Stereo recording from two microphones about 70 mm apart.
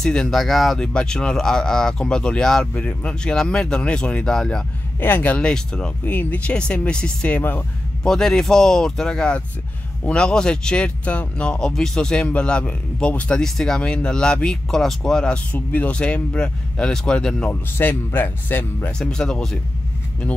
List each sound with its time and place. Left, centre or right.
0.0 s speech: centre
0.3 s speech: centre
0.9 s speech: centre
2.6 s speech: left
5.0 s speech: left
6.0 s speech: left
8.0 s speech: centre
13.4 s speech: centre
17.5 s speech: left
18.9 s speech: centre